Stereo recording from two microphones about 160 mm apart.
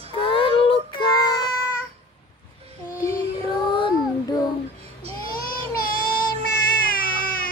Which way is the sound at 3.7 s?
30° left (ahead or behind).